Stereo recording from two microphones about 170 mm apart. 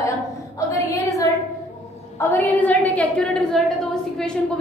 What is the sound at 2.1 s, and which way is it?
A woman's voice, 10° left (ahead or behind).